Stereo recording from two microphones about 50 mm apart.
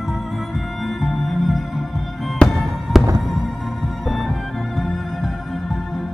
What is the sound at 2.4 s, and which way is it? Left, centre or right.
Music, centre.